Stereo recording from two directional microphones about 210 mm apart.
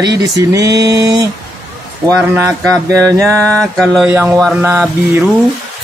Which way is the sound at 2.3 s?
15° right (ahead or behind).